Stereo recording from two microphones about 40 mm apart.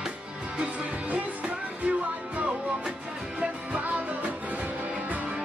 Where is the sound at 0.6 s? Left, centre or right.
Right.